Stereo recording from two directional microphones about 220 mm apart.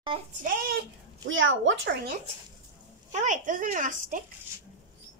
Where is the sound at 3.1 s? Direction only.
35° right (ahead or behind).